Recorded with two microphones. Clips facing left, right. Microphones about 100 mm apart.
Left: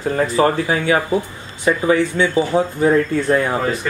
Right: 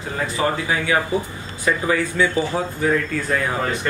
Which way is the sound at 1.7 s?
25° left (ahead or behind).